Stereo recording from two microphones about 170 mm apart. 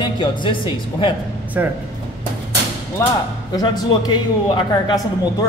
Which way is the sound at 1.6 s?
10° right (ahead or behind).